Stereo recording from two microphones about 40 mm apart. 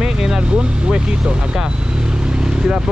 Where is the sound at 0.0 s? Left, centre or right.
Centre.